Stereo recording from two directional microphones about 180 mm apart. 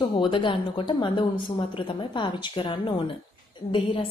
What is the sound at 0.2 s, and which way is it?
A woman's voice, 25° left (ahead or behind).